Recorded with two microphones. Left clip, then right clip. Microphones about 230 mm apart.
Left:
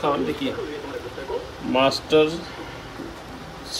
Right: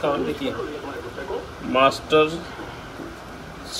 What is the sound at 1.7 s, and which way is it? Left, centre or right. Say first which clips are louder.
Speech: right 1 dB; centre.